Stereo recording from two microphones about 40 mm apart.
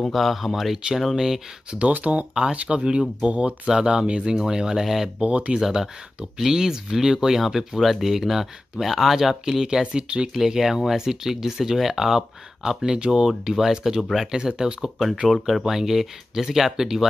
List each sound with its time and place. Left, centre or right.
0.1 s speech: centre
1.9 s speech: right
3.6 s speech: centre
5.2 s speech: right
5.6 s speech: centre
10.3 s speech: centre
13.3 s speech: centre
14.3 s speech: centre
15.2 s speech: centre